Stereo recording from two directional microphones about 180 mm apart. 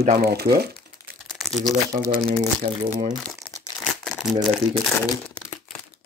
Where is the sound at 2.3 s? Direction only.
35° right (ahead or behind).